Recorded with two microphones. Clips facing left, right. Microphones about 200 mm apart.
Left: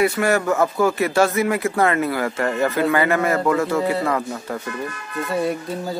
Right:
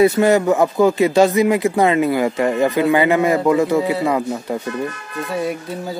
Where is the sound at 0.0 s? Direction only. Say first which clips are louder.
Right 6 dB; 20° right (ahead or behind).